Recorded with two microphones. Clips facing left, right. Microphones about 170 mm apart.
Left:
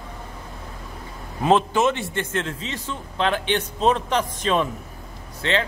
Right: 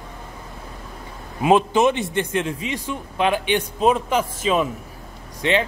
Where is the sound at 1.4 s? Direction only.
10° right (ahead or behind).